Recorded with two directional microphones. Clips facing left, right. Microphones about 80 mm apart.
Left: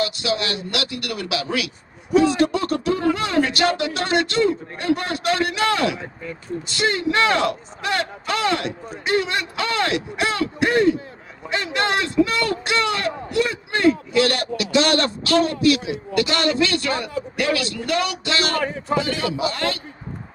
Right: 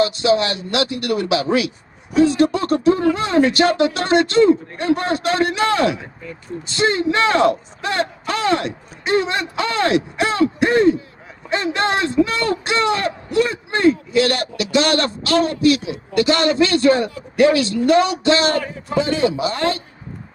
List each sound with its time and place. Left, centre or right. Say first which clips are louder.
0.0 s a man's voice: right 7 dB; right